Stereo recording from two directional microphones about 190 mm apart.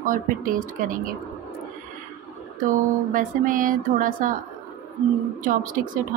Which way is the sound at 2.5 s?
45° right (ahead or behind).